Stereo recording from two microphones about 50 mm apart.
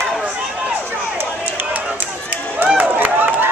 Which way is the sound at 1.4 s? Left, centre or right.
Right.